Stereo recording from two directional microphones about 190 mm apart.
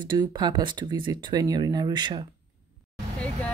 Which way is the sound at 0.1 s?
25° right (ahead or behind).